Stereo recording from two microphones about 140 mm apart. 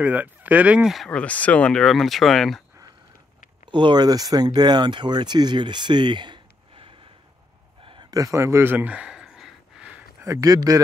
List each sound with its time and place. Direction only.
0.0 s speech: 10° right (ahead or behind)
3.7 s speech: 30° right (ahead or behind)
7.8 s a sound: 40° right (ahead or behind)
8.1 s gasp: 25° right (ahead or behind); by 10.0 s 5° right (ahead or behind)
10.2 s a man's voice: 25° right (ahead or behind)